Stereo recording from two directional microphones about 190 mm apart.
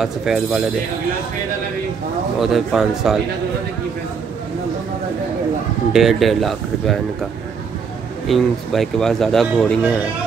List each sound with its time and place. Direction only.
0.0 s speech: centre (ahead or behind)
2.4 s speech: centre (ahead or behind)
5.9 s speech: centre (ahead or behind)
8.3 s speech: centre (ahead or behind)